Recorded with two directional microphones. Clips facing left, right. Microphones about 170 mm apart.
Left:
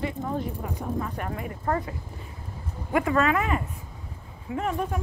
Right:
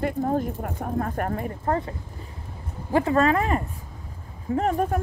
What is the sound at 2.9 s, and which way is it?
Speech, 30° right (ahead or behind).